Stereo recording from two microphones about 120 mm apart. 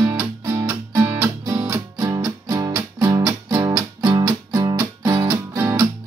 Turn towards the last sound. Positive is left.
turn(degrees=-25)  # may be behind; listen again after turning